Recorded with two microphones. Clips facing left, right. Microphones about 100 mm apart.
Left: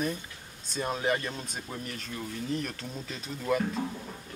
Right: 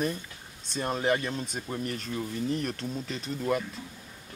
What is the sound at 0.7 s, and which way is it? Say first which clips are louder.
Speech: right 2 dB; centre (ahead or behind).